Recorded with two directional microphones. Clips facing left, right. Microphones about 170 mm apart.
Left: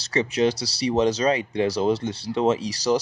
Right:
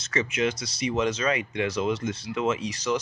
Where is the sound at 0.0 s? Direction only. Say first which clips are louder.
Left 5 dB; 35° left (ahead or behind).